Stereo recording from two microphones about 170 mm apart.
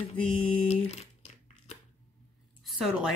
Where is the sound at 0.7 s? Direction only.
40° left (ahead or behind).